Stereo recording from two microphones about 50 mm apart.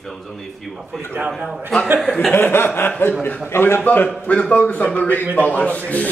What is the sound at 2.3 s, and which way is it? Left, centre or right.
Chuckle, left.